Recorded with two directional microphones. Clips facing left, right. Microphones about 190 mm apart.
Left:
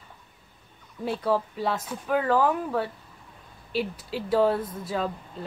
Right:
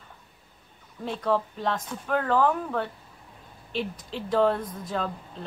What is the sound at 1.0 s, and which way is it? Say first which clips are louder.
A woman's voice: left 1 dB; 10° left (ahead or behind).